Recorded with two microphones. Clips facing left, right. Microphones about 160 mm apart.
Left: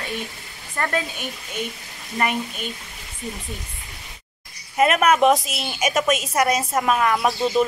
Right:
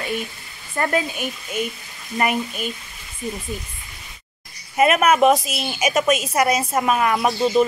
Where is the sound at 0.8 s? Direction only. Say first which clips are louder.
Right 3 dB; 10° right (ahead or behind).